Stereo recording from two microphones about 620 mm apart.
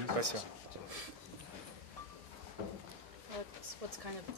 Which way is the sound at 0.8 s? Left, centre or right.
Right.